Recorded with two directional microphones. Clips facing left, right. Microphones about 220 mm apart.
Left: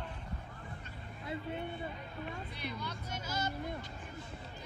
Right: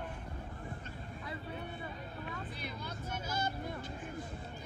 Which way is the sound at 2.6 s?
50° right (ahead or behind).